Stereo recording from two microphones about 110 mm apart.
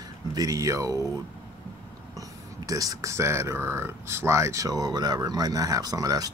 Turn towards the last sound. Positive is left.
turn(degrees=-35)  # may be behind; listen again after turning